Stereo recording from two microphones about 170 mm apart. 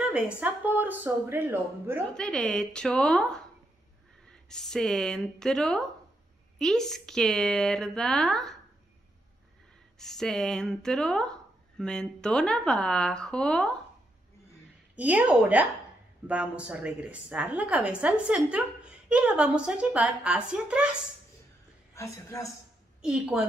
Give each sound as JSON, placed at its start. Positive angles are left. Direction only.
{"t": 0.0, "sound": "a woman's voice", "side_deg": -5}
{"t": 2.1, "sound": "a woman's voice", "side_deg": 0}
{"t": 9.9, "sound": "a woman's voice", "side_deg": 0}
{"t": 15.0, "sound": "a woman's voice", "side_deg": -10}
{"t": 21.9, "sound": "a woman's voice", "side_deg": 15}
{"t": 23.0, "sound": "a woman's voice", "side_deg": -5}